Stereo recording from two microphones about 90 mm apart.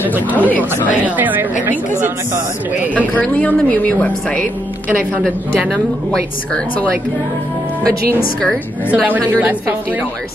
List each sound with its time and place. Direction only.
0.0 s a woman's voice: 20° right (ahead or behind)
3.2 s a woman's voice: 15° left (ahead or behind)
8.9 s a woman's voice: 15° right (ahead or behind)